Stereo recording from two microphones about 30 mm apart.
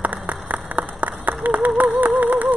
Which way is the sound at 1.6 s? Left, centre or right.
Right.